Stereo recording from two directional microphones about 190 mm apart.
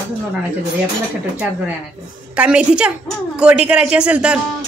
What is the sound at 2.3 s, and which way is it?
A man's voice, 5° right (ahead or behind).